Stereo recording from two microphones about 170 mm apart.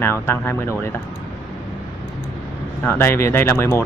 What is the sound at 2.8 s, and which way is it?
A man's voice, 10° left (ahead or behind).